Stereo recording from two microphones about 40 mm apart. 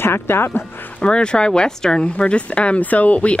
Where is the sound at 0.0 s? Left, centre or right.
Left.